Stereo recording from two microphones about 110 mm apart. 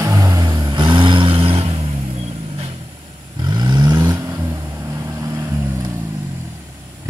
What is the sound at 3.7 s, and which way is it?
Vehicle, 40° right (ahead or behind).